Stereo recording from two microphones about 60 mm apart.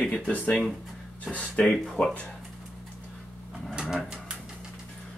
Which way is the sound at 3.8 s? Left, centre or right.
Centre.